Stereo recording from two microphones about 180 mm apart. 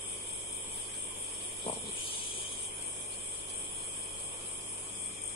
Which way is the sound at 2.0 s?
30° left (ahead or behind).